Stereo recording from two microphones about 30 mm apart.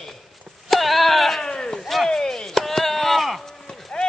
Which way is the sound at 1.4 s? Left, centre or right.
Left.